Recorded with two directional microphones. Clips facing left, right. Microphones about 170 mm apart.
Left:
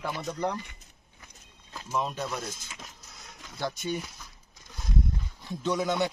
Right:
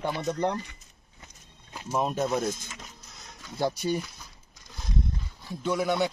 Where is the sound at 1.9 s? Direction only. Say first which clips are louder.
Right 5 dB; 45° right (ahead or behind).